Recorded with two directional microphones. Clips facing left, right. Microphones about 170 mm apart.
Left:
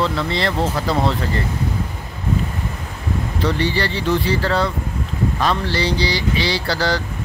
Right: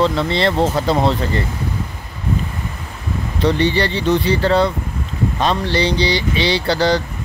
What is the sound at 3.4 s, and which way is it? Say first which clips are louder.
Speech: right 5 dB; 20° right (ahead or behind).